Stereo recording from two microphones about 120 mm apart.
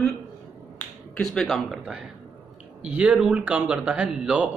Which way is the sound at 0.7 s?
5° left (ahead or behind).